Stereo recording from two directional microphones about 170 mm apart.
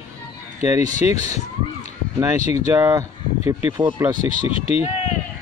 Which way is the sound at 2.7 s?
15° right (ahead or behind).